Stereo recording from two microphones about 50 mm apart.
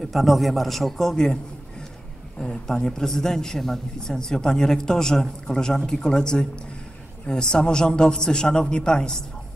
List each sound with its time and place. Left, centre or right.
0.0 s a man's voice: centre